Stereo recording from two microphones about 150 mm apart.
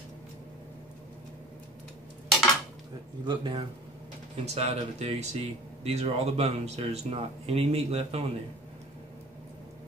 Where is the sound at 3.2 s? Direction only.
30° right (ahead or behind).